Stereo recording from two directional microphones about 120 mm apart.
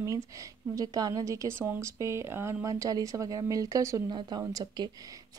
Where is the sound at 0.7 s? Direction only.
30° right (ahead or behind).